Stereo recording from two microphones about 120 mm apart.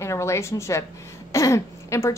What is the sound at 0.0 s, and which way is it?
A woman's voice, 25° left (ahead or behind).